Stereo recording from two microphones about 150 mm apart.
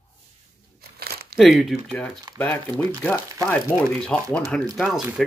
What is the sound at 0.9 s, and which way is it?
Crumpling, 90° right.